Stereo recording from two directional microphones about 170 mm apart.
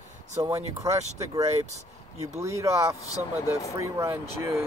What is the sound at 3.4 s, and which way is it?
Speech, 20° left (ahead or behind).